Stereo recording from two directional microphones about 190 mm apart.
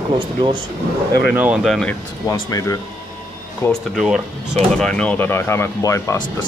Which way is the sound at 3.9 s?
5° right (ahead or behind).